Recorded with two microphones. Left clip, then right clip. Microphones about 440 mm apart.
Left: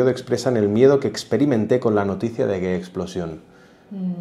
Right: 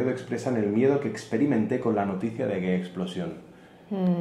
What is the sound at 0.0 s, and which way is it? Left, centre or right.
Speech, left.